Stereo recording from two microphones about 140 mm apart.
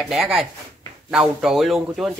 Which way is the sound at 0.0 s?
Centre (ahead or behind).